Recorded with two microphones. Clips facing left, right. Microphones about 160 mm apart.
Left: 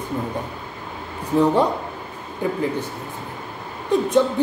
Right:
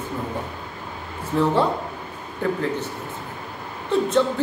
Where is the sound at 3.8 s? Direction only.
15° left (ahead or behind).